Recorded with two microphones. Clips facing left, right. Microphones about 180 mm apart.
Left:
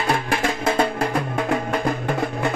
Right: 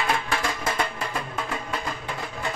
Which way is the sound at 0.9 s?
65° left (ahead or behind).